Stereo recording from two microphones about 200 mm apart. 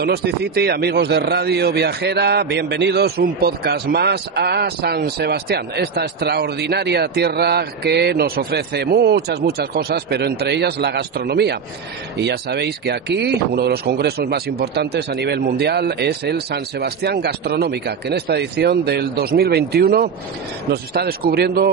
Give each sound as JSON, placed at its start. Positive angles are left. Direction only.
{"t": 0.0, "sound": "a man's voice", "side_deg": -55}